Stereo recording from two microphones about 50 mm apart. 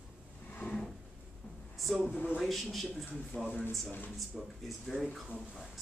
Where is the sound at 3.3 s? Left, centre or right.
Left.